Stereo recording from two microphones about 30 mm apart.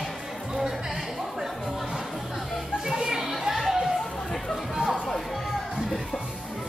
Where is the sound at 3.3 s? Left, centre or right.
Centre.